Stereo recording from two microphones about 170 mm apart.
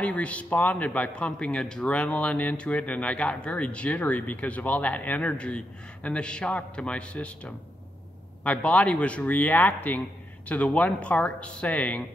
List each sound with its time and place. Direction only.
0.0 s a man's voice: 5° left (ahead or behind)